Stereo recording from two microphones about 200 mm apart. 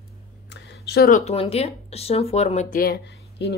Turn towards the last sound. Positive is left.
turn(degrees=55)  # may be behind; listen again after turning